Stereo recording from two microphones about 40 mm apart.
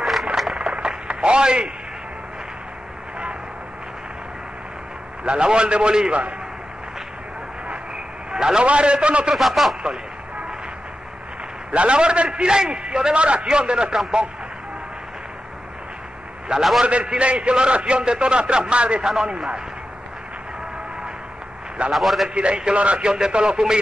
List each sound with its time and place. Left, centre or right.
0.0 s a sound: centre
0.6 s a sound: right
5.2 s a man's voice: right
8.3 s a sound: centre
8.6 s a man's voice: right
9.3 s speech: centre
11.7 s a man's voice: right
16.5 s a man's voice: right
19.0 s a man's voice: centre
21.9 s speech: centre
22.3 s a man's voice: right